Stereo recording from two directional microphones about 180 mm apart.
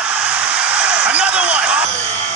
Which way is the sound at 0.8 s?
5° right (ahead or behind).